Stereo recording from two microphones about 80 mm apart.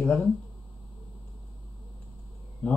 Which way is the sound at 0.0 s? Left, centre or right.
Centre.